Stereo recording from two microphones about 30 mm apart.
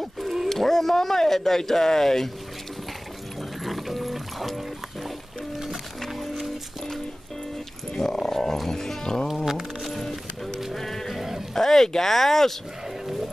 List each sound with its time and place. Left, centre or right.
0.5 s speech: centre
3.6 s music: centre
7.9 s dog: left
8.3 s music: centre
8.6 s speech: centre
9.3 s music: centre
9.8 s music: centre
11.1 s sheep: centre
11.5 s roaring cats: centre
11.9 s speech: centre